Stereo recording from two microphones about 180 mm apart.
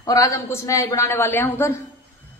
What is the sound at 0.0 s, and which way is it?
A woman's voice, 20° left (ahead or behind).